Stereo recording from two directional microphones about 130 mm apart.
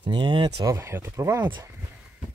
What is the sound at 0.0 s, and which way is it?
Speech, 35° right (ahead or behind).